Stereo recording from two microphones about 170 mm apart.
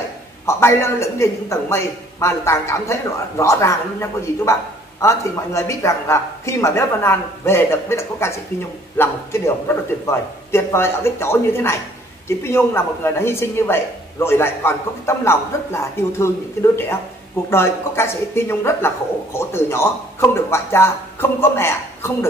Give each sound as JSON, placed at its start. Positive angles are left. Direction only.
{"t": 0.5, "sound": "a woman's voice", "side_deg": 15}
{"t": 17.5, "sound": "a woman's voice", "side_deg": 15}